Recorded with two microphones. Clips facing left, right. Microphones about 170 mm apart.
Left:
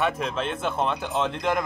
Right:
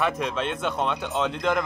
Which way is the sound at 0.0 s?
Centre (ahead or behind).